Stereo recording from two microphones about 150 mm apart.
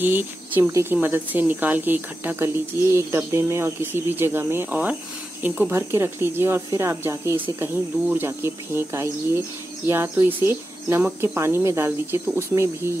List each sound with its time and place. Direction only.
0.0 s speech: 15° right (ahead or behind)